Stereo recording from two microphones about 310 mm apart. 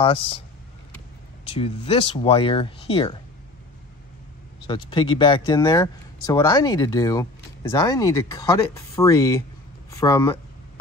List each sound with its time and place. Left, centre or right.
0.0 s speech: centre
1.6 s speech: centre
4.6 s speech: centre